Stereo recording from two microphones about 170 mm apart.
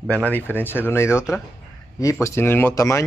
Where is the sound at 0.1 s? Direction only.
10° left (ahead or behind).